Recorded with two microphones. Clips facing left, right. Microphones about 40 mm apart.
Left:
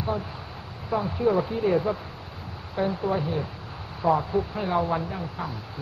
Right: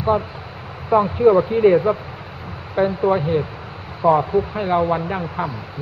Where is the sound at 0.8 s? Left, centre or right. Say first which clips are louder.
Right 10 dB; right.